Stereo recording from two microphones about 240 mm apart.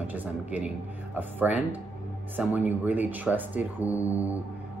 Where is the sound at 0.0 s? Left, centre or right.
Centre.